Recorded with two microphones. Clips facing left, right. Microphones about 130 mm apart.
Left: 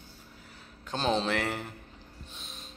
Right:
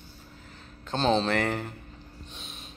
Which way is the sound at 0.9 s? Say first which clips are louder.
Right 4 dB; 10° left (ahead or behind).